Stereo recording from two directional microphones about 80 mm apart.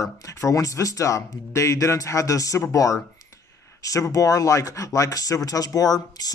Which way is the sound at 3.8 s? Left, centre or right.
Left.